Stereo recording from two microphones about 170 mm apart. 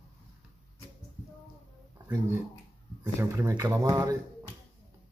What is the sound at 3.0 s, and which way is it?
Speech, 15° right (ahead or behind).